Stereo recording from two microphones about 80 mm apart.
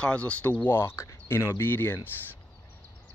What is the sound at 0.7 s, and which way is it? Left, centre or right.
Speech, left.